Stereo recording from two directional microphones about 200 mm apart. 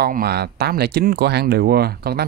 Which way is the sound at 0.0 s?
50° right (ahead or behind).